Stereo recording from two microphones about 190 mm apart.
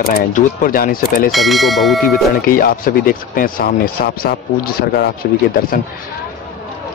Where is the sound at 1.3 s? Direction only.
Centre (ahead or behind).